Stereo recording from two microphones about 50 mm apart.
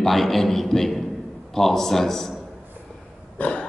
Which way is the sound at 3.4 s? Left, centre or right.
Left.